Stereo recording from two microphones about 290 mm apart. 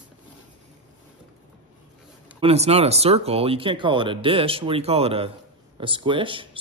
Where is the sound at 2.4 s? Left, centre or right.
Right.